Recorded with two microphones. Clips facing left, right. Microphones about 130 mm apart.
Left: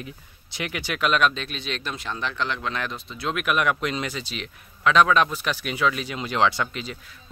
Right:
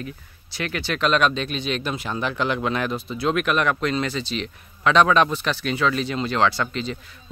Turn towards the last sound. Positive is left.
turn(degrees=15)  # may be behind; listen again after turning